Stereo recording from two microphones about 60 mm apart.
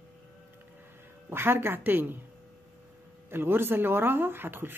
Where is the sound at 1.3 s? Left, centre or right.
Right.